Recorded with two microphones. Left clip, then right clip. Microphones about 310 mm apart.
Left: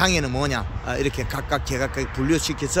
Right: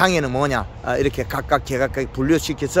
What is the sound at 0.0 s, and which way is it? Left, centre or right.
Speech, centre.